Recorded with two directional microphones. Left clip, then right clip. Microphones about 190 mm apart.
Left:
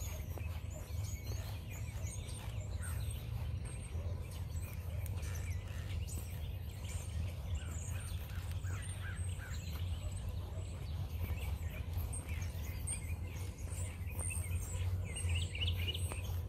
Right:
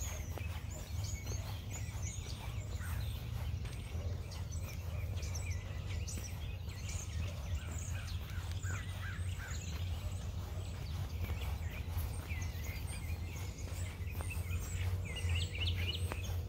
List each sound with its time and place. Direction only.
15.3 s bird vocalization: 40° left (ahead or behind)